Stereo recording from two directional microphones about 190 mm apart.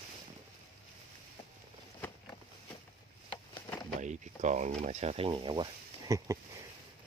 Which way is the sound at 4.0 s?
40° right (ahead or behind).